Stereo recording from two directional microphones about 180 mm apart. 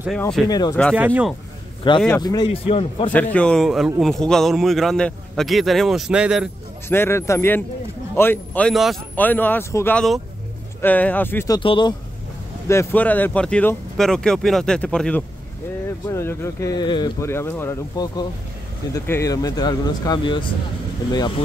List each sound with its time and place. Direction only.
0.5 s speech: 20° left (ahead or behind)
0.9 s speech: 10° right (ahead or behind)
2.1 s speech: 20° left (ahead or behind)
3.1 s a man's voice: 10° left (ahead or behind)
6.9 s a man's voice: 15° left (ahead or behind)
9.9 s a man's voice: centre (ahead or behind); by 11.9 s 25° left (ahead or behind)
12.6 s a man's voice: 10° left (ahead or behind)